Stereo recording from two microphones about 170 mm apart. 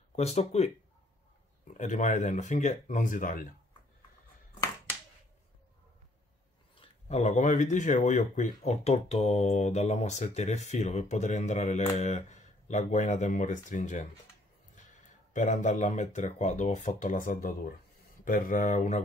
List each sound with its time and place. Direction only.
0.1 s speech: 40° left (ahead or behind)
1.7 s speech: 45° left (ahead or behind)
6.8 s speech: 40° left (ahead or behind)
15.3 s speech: 45° left (ahead or behind)